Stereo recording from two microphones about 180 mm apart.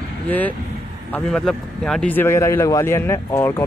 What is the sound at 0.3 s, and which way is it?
Speech, 10° left (ahead or behind).